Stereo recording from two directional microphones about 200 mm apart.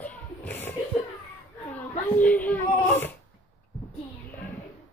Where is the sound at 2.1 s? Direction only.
10° left (ahead or behind).